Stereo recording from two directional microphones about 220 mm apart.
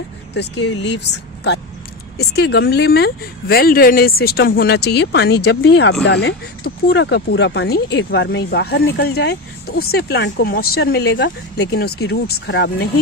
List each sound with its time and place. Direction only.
0.3 s speech: 50° left (ahead or behind)